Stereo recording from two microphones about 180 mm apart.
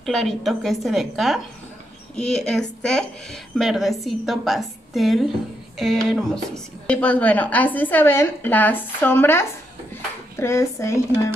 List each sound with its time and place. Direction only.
0.0 s a woman's voice: centre (ahead or behind)